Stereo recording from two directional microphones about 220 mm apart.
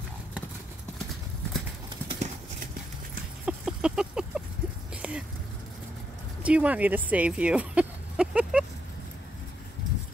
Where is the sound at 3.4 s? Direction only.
5° right (ahead or behind).